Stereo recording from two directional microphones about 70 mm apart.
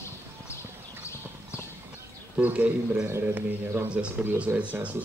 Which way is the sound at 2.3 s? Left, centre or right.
Right.